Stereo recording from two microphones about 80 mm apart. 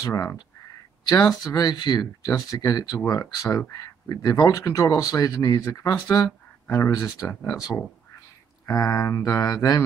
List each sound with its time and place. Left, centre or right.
0.0 s speech: left
1.0 s speech: left
8.6 s speech: left